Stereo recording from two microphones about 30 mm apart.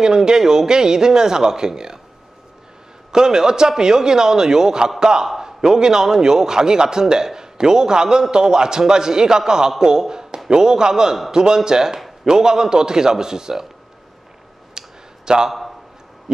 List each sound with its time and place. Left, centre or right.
0.0 s a man's voice: right
3.1 s a man's voice: right
14.7 s a sound: right